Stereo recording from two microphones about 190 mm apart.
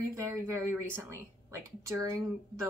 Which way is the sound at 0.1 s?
15° right (ahead or behind).